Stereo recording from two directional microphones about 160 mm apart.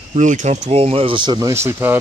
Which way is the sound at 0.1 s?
50° right (ahead or behind).